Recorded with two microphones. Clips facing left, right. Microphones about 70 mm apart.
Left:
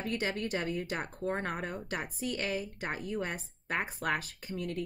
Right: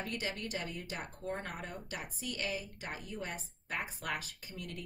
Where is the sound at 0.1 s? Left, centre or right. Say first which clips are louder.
Left 6 dB; left.